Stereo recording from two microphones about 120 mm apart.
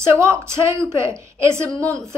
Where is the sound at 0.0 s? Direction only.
20° right (ahead or behind).